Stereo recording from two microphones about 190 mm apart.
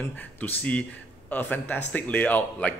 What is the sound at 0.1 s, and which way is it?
Speech, 10° left (ahead or behind).